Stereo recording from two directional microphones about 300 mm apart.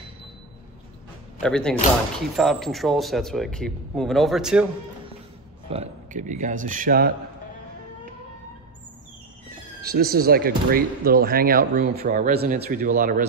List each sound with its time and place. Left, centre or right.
1.4 s speech: centre
5.7 s speech: right
9.8 s speech: right